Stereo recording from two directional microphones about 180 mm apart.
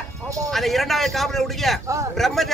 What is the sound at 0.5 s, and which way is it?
A man's voice, centre (ahead or behind).